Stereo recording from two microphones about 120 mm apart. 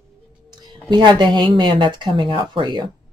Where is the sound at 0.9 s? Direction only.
40° right (ahead or behind).